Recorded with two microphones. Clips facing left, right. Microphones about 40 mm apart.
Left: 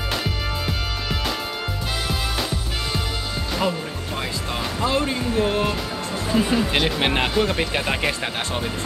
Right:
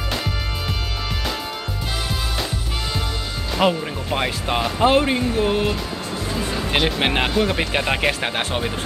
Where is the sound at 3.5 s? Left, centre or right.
Right.